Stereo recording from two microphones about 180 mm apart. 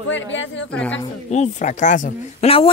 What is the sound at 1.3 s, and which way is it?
Speech, 40° left (ahead or behind).